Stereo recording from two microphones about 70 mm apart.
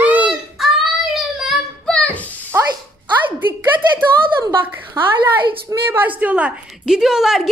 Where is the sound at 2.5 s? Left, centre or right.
Right.